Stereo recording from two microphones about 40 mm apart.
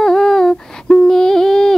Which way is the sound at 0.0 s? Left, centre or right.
Centre.